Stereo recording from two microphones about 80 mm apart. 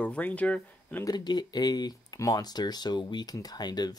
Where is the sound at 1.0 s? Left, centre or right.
Left.